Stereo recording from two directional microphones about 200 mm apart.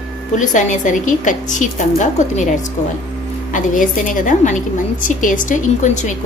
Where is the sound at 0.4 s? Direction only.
40° left (ahead or behind).